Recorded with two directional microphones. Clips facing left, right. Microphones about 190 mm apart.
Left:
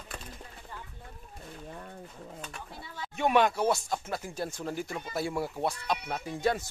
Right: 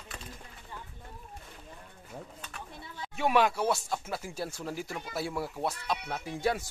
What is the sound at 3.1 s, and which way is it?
Speech, 5° right (ahead or behind).